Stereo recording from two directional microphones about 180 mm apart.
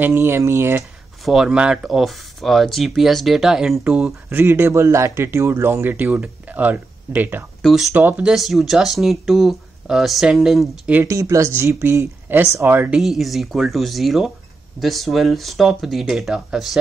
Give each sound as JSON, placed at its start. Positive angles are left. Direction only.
{"t": 0.0, "sound": "speech", "side_deg": -10}
{"t": 1.2, "sound": "speech", "side_deg": 0}
{"t": 11.0, "sound": "speech", "side_deg": -15}